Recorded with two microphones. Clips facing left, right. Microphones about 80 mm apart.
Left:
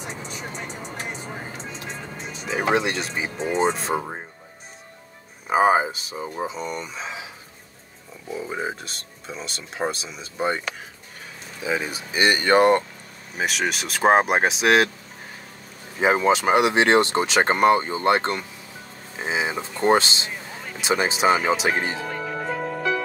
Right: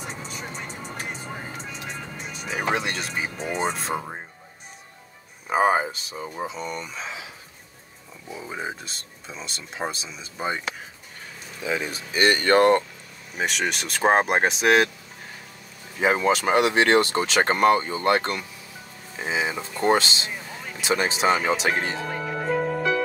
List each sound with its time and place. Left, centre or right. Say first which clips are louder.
1.2 s music: left 1 dB; left
2.4 s speech: left 4 dB; centre
3.9 s speech: left 3 dB; centre
5.5 s speech: left 3 dB; centre
8.5 s speech: left 1 dB; centre
11.6 s speech: left 2 dB; centre
16.0 s speech: left 2 dB; centre
22.1 s music: right 2 dB; centre